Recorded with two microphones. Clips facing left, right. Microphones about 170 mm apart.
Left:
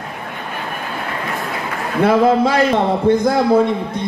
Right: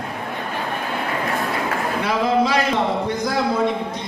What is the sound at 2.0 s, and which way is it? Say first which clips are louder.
A man's voice: left 7 dB; 55° left (ahead or behind).